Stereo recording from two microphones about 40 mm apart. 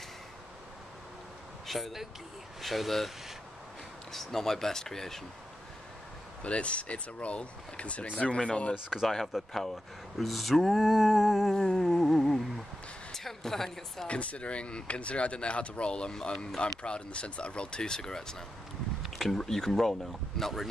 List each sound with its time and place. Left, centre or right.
1.7 s speech: centre
4.1 s speech: centre
6.4 s speech: left
9.3 s speech: centre
11.5 s humming: centre
13.1 s speech: centre
14.0 s speech: left; by 20.6 s centre